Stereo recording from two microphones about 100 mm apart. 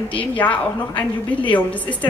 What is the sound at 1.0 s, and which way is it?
Speech, 55° left (ahead or behind).